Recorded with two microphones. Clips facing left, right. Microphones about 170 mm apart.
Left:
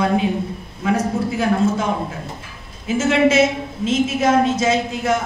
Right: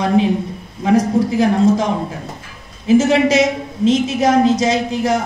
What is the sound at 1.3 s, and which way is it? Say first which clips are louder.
Speech: right 5 dB; 35° right (ahead or behind).